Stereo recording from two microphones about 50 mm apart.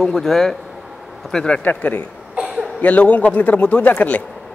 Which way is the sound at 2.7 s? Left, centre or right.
Left.